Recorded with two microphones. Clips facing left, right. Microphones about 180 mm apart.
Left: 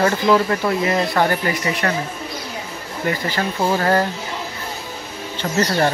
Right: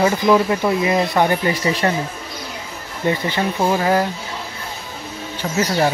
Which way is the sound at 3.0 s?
20° right (ahead or behind).